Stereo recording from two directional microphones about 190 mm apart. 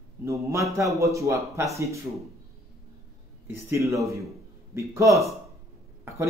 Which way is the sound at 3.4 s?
15° right (ahead or behind).